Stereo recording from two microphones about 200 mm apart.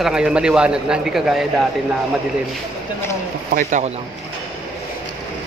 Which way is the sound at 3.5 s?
40° right (ahead or behind).